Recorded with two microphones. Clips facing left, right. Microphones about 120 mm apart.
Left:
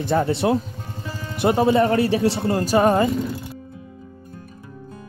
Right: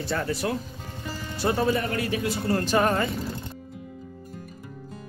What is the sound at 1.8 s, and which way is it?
Speech, 30° left (ahead or behind).